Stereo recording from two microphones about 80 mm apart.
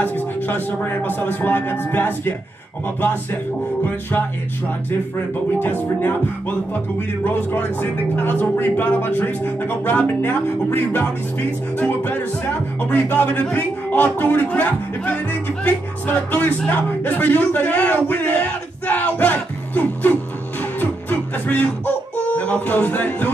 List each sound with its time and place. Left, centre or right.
0.0 s speech: left
5.1 s speech: left
7.2 s speech: left
20.8 s music: centre